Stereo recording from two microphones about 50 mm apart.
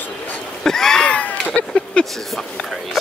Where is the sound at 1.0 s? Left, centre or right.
Left.